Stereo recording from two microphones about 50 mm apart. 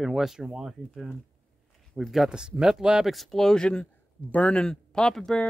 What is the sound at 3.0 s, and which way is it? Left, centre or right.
Speech, centre.